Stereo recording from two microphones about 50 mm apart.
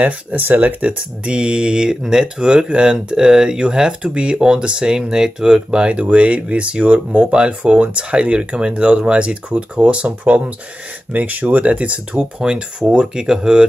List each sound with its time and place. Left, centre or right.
0.4 s speech: right; by 13.7 s centre